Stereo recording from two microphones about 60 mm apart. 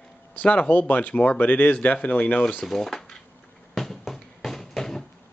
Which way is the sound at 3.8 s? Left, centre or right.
Centre.